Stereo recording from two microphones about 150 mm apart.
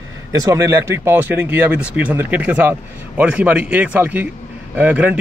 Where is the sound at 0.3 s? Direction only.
20° right (ahead or behind).